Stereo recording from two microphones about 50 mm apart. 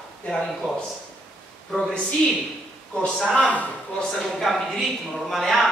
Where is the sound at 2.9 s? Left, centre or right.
Centre.